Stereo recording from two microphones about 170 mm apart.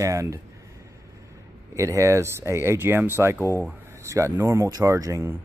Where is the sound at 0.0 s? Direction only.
20° right (ahead or behind).